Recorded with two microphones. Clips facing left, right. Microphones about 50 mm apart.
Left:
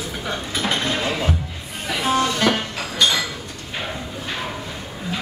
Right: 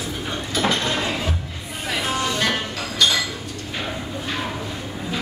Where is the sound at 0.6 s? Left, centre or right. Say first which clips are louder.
Even; centre.